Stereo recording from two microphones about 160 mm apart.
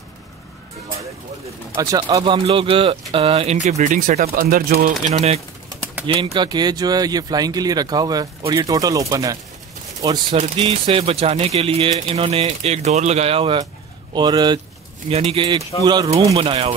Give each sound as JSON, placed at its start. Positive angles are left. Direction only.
{"t": 1.8, "sound": "speech", "side_deg": -25}
{"t": 6.0, "sound": "speech", "side_deg": -30}
{"t": 10.4, "sound": "speech", "side_deg": -35}
{"t": 15.0, "sound": "speech", "side_deg": -40}